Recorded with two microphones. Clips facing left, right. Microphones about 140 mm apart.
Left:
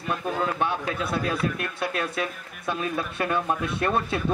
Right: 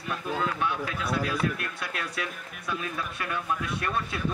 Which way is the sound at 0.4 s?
30° left (ahead or behind).